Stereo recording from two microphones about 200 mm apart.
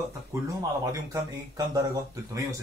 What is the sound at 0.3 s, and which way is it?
Speech, 15° right (ahead or behind).